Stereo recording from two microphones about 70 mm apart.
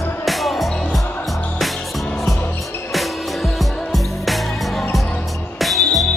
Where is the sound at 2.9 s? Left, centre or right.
Centre.